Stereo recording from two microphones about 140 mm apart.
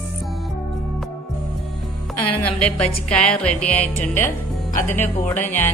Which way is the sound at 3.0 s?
5° left (ahead or behind).